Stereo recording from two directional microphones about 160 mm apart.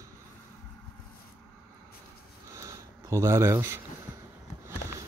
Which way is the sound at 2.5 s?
20° right (ahead or behind).